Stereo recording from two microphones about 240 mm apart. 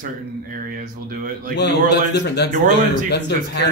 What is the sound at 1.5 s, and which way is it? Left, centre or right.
Speech, left.